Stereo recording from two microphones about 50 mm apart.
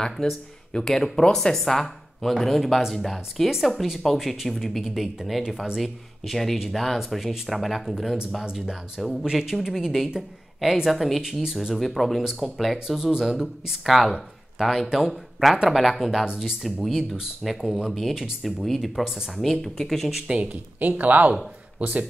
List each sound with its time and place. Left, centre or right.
0.2 s speech: centre
9.2 s speech: centre
20.3 s speech: centre
20.8 s speech: right